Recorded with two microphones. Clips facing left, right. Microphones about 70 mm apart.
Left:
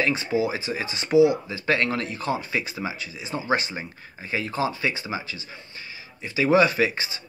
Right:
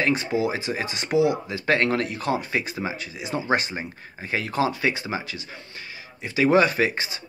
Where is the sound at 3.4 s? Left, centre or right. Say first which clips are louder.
Even; right.